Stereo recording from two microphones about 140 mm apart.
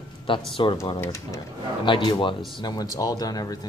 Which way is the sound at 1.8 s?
35° left (ahead or behind).